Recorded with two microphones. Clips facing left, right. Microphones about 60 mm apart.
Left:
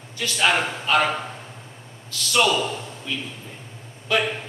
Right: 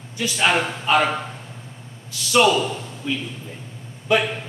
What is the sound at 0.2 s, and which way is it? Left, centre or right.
A man's voice, centre.